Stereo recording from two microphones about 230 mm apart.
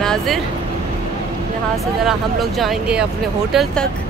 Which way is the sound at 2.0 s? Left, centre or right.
Centre.